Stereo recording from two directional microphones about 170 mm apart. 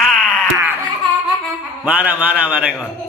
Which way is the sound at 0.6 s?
15° right (ahead or behind).